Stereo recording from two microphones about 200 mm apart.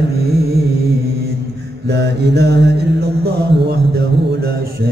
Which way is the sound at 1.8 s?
55° right (ahead or behind).